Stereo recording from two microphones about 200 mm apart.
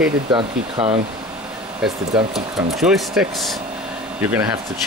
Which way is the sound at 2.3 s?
Centre (ahead or behind).